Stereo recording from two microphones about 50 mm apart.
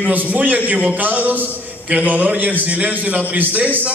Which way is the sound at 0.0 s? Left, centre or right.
Right.